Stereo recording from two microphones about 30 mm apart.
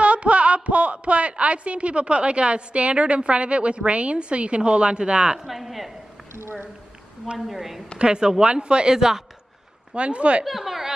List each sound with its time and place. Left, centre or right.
0.0 s speech: right
5.5 s speech: centre
7.3 s speech: centre
8.0 s a woman's voice: right
9.9 s speech: right
10.4 s speech: centre